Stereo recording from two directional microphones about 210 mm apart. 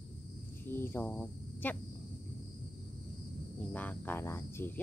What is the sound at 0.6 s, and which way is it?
Speech, 10° left (ahead or behind).